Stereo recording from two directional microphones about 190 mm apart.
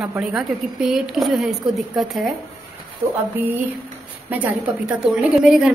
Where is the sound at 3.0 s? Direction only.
15° right (ahead or behind).